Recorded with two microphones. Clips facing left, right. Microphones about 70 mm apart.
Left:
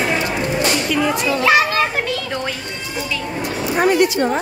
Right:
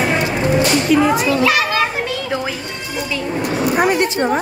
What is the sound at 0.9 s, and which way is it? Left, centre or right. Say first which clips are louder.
Speech: right 5 dB; centre.